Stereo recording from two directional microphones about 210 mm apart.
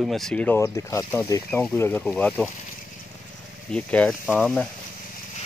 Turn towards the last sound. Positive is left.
turn(degrees=5)  # may be behind; listen again after turning